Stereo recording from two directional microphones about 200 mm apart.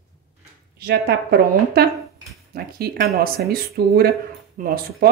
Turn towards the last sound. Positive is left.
turn(degrees=-45)  # may be behind; listen again after turning